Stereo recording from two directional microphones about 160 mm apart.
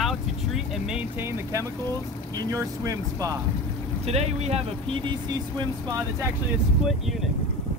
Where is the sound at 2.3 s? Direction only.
20° right (ahead or behind).